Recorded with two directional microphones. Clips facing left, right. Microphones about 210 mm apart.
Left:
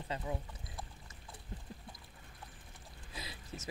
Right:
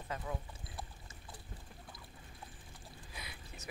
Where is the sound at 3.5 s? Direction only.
30° left (ahead or behind).